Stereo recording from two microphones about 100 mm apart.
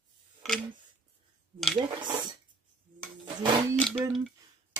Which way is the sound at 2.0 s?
50° right (ahead or behind).